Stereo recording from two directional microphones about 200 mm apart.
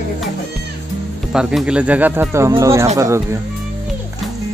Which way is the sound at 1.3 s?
Centre (ahead or behind).